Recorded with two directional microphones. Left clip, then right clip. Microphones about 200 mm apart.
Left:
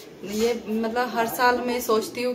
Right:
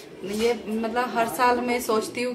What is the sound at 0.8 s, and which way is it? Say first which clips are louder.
A woman's voice: left 1 dB; 5° right (ahead or behind).